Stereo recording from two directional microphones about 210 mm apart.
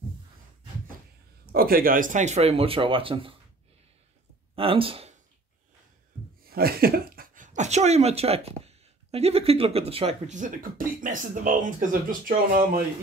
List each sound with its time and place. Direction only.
1.5 s speech: 45° right (ahead or behind); by 3.3 s 25° right (ahead or behind)
4.6 s speech: 25° right (ahead or behind)
6.5 s speech: 45° right (ahead or behind)